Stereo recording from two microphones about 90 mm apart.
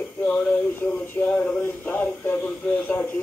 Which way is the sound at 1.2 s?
10° left (ahead or behind).